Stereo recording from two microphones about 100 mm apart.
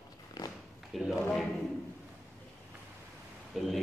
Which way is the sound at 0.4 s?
40° left (ahead or behind).